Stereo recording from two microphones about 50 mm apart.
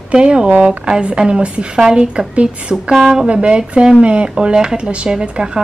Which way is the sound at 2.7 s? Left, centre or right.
Centre.